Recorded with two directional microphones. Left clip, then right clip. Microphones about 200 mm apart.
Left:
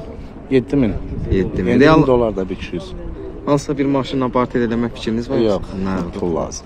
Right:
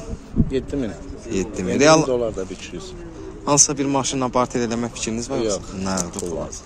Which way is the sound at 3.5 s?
5° right (ahead or behind).